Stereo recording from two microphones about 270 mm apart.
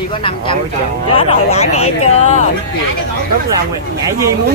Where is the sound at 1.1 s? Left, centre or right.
Left.